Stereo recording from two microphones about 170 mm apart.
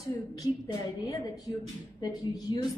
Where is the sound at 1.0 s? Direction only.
20° left (ahead or behind).